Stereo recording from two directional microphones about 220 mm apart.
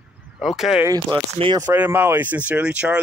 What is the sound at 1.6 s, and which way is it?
Speech, 10° right (ahead or behind).